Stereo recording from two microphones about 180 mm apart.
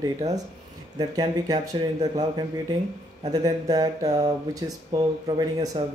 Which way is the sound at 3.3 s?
20° right (ahead or behind).